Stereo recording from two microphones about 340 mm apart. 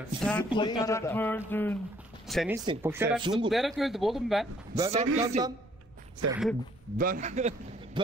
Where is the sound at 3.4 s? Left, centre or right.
Centre.